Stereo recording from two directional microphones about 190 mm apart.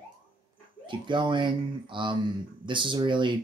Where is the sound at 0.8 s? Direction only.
25° right (ahead or behind).